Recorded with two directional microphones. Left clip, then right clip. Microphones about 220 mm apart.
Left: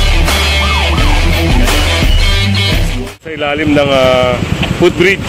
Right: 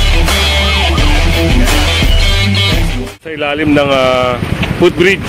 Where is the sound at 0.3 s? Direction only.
Centre (ahead or behind).